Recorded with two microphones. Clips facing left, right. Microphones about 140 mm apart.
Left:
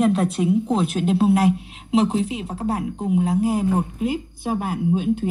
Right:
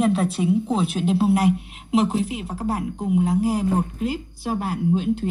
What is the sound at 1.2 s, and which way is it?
A woman's voice, 25° left (ahead or behind).